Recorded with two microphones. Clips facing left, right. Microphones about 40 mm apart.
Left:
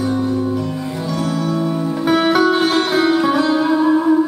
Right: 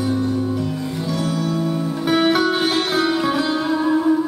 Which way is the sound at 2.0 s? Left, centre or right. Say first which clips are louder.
Left 3 dB; centre.